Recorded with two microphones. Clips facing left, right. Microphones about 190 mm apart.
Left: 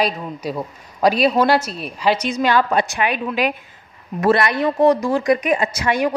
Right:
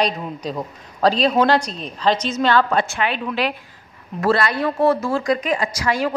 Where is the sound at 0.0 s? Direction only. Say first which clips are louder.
Left 1 dB; 10° left (ahead or behind).